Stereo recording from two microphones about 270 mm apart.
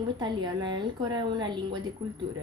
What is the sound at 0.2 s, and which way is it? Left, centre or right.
A woman's voice, centre.